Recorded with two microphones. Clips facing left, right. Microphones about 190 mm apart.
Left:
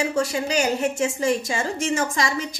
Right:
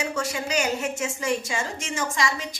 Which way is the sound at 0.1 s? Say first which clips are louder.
Left 4 dB; 35° left (ahead or behind).